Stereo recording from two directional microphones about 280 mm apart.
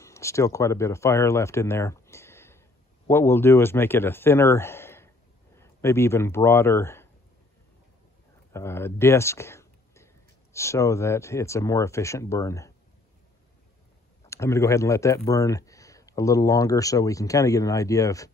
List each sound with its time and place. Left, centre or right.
0.0 s speech: centre
8.5 s speech: centre
14.3 s speech: centre